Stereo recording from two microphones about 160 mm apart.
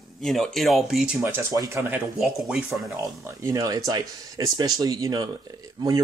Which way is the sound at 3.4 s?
20° right (ahead or behind).